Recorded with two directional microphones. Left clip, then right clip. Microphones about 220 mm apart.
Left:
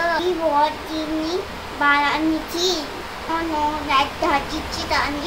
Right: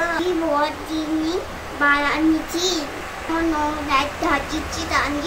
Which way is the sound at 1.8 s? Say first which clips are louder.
Left 1 dB; 15° left (ahead or behind).